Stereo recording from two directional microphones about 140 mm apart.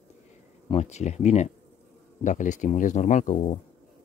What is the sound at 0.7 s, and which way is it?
Speech, 50° left (ahead or behind).